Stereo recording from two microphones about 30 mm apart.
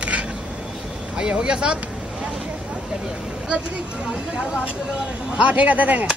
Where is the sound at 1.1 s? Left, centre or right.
Right.